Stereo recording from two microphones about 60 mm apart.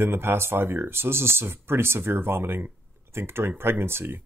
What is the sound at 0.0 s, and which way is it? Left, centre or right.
Speech, right.